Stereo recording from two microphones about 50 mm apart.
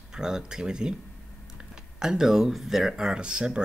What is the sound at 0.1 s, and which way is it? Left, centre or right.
Speech, centre.